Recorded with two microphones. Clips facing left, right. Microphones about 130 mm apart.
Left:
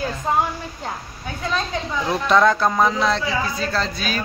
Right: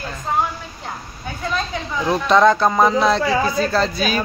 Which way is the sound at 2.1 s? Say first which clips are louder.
Right 3 dB; centre (ahead or behind).